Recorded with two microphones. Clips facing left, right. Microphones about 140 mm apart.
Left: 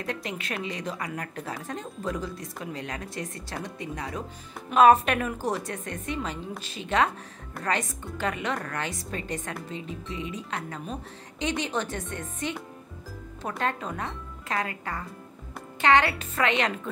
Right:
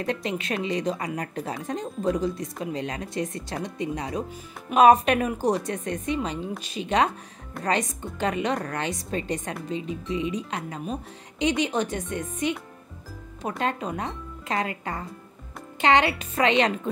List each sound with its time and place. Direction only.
0.0 s speech: 25° right (ahead or behind)